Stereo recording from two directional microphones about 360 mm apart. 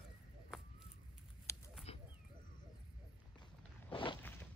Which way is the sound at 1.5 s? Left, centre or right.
Centre.